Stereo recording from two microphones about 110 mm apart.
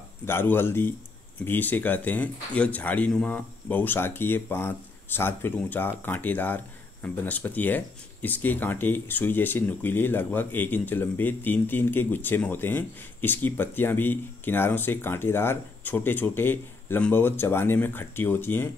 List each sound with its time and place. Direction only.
0.2 s speech: 20° left (ahead or behind)
3.1 s speech: 5° left (ahead or behind)
3.3 s speech: 15° left (ahead or behind)